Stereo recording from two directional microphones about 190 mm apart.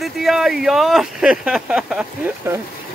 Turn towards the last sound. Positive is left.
turn(degrees=-5)  # may be behind; listen again after turning